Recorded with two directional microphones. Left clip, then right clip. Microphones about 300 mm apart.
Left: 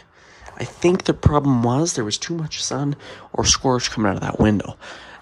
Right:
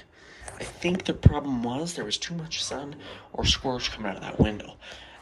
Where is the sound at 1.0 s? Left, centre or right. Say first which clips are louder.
Left 9 dB; left.